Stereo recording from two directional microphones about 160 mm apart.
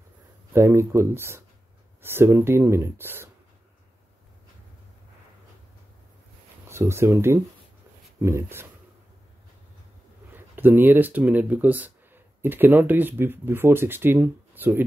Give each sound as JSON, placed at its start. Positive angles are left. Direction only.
{"t": 0.5, "sound": "speech", "side_deg": -15}
{"t": 6.7, "sound": "speech", "side_deg": -15}
{"t": 10.3, "sound": "speech", "side_deg": -10}